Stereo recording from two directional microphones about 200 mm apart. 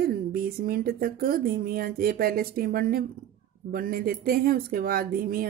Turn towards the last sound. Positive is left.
turn(degrees=-45)  # may be behind; listen again after turning